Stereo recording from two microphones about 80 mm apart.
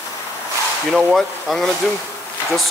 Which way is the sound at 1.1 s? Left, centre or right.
Centre.